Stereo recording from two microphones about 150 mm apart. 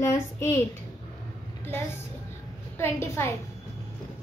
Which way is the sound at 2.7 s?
15° left (ahead or behind).